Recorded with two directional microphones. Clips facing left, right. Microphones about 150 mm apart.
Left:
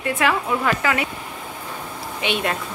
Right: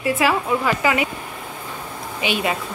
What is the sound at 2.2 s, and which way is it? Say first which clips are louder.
Speech: right 1 dB; 5° right (ahead or behind).